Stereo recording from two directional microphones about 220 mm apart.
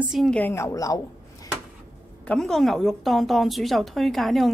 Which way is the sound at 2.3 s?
Centre (ahead or behind).